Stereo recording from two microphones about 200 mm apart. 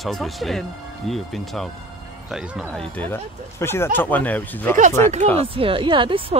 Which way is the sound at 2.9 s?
10° left (ahead or behind).